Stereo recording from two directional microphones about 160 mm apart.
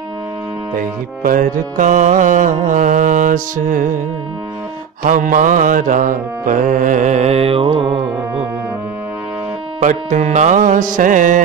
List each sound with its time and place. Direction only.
0.7 s music: 60° right (ahead or behind)
5.0 s music: 55° right (ahead or behind); by 8.0 s 35° right (ahead or behind)
9.8 s music: 50° right (ahead or behind)